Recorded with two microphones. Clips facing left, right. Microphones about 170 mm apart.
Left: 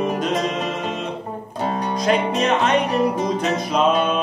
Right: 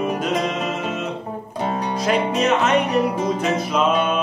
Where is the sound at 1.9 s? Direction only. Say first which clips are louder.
Left 1 dB; 5° right (ahead or behind).